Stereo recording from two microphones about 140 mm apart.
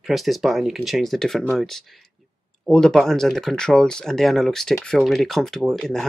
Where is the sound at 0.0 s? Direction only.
Centre (ahead or behind).